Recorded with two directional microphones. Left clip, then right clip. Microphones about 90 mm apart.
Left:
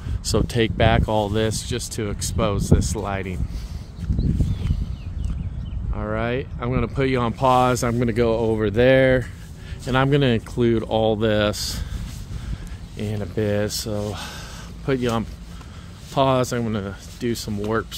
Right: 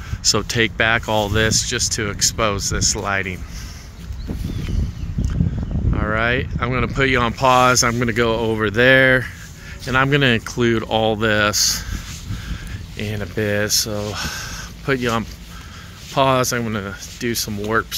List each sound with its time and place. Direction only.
0.2 s speech: 35° left (ahead or behind); by 3.3 s 15° left (ahead or behind)
5.9 s speech: 5° left (ahead or behind); by 11.8 s 30° left (ahead or behind)
12.9 s speech: 10° left (ahead or behind)
14.1 s a sound: 5° left (ahead or behind)
16.2 s speech: 10° left (ahead or behind)